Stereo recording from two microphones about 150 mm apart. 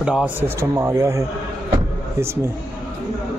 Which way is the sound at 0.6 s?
20° right (ahead or behind).